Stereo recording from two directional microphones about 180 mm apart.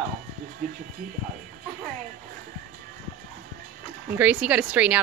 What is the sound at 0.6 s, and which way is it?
Speech, 50° right (ahead or behind).